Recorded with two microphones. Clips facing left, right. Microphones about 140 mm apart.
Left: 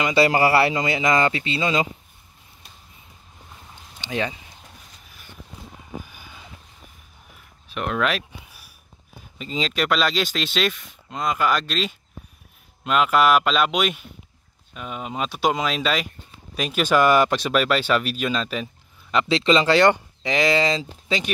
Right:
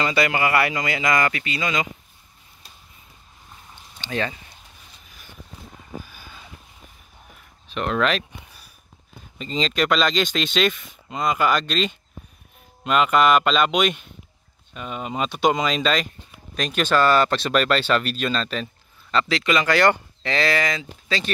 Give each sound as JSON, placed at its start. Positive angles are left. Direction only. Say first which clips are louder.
{"t": 0.1, "sound": "speech", "louder": "left 4 dB", "side_deg": 30}
{"t": 4.0, "sound": "speech", "louder": "even", "side_deg": 15}
{"t": 6.0, "sound": "vehicle", "louder": "even", "side_deg": 15}
{"t": 7.6, "sound": "speech", "louder": "right 2 dB", "side_deg": 5}
{"t": 19.2, "sound": "speech", "louder": "left 5 dB", "side_deg": 25}